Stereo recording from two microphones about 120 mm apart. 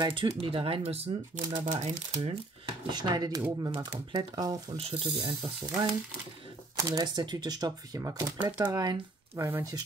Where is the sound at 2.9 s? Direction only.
35° right (ahead or behind).